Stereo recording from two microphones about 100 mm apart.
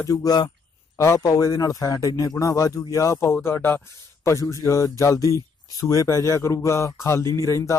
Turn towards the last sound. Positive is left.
turn(degrees=30)  # may be behind; listen again after turning